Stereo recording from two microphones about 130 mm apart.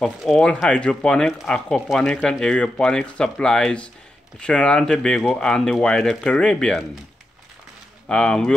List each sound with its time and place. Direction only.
0.0 s speech: centre (ahead or behind)
8.1 s speech: 5° left (ahead or behind)